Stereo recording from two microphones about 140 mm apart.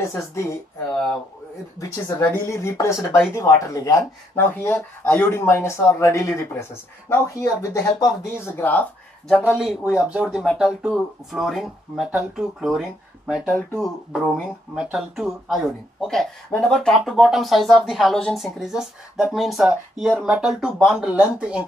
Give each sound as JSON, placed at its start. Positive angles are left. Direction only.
{"t": 0.0, "sound": "speech", "side_deg": 20}
{"t": 1.8, "sound": "speech", "side_deg": 20}
{"t": 7.7, "sound": "speech", "side_deg": 20}
{"t": 9.6, "sound": "speech", "side_deg": -5}